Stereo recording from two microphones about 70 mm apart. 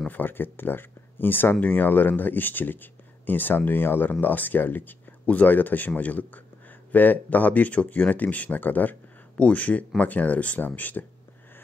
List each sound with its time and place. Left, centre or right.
0.1 s speech: left